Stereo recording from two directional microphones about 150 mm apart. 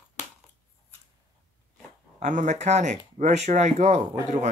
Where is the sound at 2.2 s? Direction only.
55° right (ahead or behind).